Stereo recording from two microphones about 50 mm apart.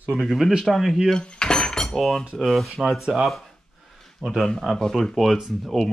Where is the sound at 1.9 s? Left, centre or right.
Centre.